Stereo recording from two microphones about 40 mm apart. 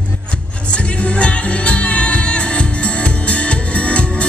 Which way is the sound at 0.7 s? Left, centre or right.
Left.